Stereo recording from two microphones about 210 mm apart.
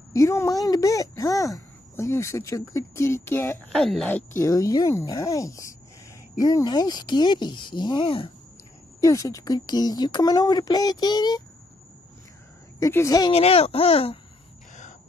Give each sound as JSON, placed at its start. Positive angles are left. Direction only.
{"t": 0.1, "sound": "speech", "side_deg": 15}
{"t": 4.4, "sound": "speech", "side_deg": 15}
{"t": 9.0, "sound": "speech", "side_deg": 15}
{"t": 12.7, "sound": "speech", "side_deg": 15}
{"t": 13.3, "sound": "speech", "side_deg": 30}